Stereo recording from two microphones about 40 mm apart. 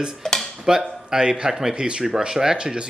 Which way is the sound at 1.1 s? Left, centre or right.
Right.